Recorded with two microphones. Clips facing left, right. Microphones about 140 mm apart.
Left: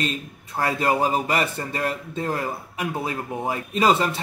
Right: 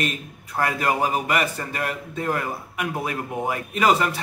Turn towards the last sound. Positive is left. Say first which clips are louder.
# even
turn(degrees=30)  # may be behind; listen again after turning